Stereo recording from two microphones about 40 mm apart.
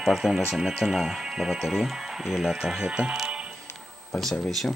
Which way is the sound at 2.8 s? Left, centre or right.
Right.